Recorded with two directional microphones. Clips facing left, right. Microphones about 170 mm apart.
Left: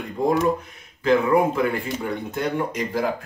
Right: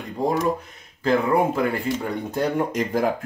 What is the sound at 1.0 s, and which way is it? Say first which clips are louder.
Speech: left 1 dB; 35° right (ahead or behind).